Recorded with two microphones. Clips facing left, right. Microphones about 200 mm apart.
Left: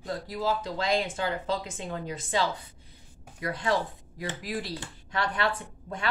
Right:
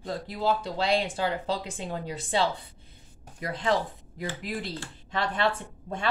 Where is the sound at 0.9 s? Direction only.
30° right (ahead or behind).